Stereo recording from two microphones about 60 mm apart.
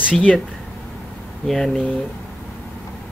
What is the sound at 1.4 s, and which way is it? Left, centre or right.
Speech, centre.